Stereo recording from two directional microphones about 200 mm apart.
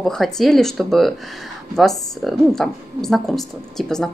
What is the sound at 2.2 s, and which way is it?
A woman's voice, centre (ahead or behind).